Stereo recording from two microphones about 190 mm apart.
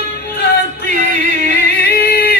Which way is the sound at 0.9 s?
40° right (ahead or behind).